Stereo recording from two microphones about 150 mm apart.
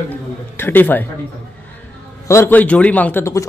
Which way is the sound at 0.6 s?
15° left (ahead or behind).